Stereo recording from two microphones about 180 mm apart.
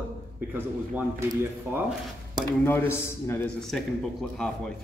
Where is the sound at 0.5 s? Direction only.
15° right (ahead or behind).